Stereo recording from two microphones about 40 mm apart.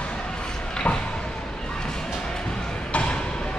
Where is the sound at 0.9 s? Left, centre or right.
Left.